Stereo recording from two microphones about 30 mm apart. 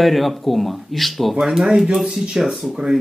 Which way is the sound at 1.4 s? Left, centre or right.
Centre.